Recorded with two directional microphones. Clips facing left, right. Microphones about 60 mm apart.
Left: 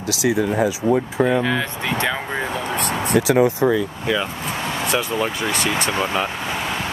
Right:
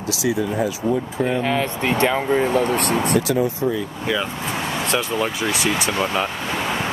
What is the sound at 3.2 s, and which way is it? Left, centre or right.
Speech, left.